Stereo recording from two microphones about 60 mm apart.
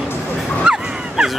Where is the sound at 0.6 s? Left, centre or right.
Centre.